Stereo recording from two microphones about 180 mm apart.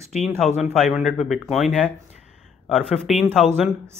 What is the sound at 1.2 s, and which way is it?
A man's voice, centre (ahead or behind).